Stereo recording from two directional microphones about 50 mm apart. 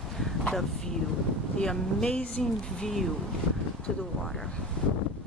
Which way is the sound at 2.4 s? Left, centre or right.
Centre.